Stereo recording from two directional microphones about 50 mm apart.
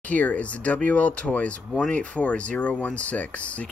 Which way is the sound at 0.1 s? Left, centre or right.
Left.